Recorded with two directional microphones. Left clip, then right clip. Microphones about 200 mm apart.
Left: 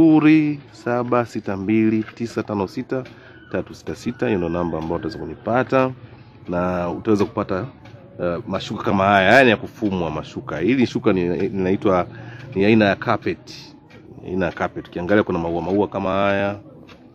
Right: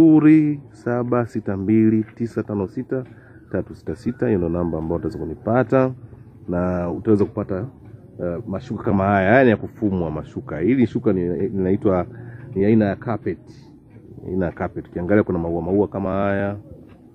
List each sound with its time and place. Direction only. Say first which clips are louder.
0.0 s speech: right 1 dB; centre (ahead or behind)
3.5 s speech: even; centre (ahead or behind)
4.6 s speech: even; 15° left (ahead or behind)
5.4 s speech: even; 10° right (ahead or behind)
7.3 s speech: left 3 dB; 10° left (ahead or behind)
11.0 s speech: left 2 dB; 15° left (ahead or behind)
11.6 s speech: left 1 dB; 5° left (ahead or behind)
12.5 s speech: left 3 dB; 15° left (ahead or behind)
14.3 s speech: left 2 dB; centre (ahead or behind)